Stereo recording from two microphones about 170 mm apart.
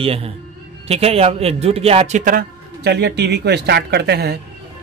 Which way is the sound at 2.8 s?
75° right (ahead or behind).